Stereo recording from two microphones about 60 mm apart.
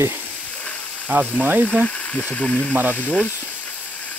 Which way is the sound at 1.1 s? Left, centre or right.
Right.